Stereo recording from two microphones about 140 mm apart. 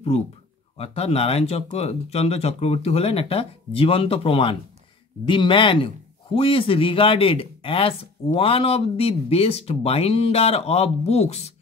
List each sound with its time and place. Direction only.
0.7 s speech: 45° left (ahead or behind)